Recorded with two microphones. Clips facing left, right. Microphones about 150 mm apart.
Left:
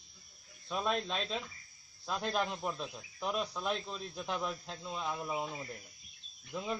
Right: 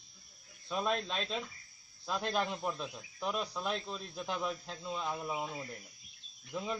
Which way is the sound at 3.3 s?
40° right (ahead or behind).